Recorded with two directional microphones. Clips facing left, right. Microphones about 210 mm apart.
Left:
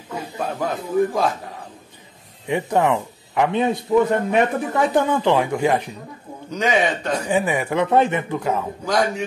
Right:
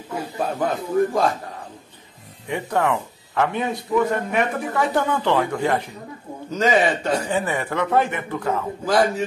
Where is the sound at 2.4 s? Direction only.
20° left (ahead or behind).